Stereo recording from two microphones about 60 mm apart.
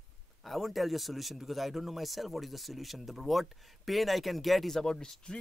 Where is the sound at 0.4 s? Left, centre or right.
Centre.